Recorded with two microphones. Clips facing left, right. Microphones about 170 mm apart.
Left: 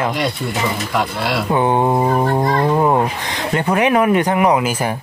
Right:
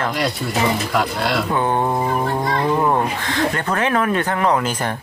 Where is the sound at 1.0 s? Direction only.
Centre (ahead or behind).